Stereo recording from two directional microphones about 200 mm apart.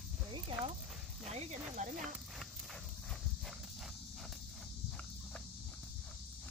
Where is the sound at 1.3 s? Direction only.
35° right (ahead or behind).